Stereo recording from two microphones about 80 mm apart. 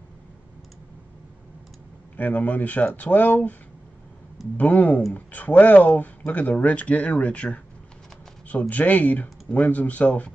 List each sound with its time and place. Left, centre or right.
2.1 s speech: left
4.6 s speech: left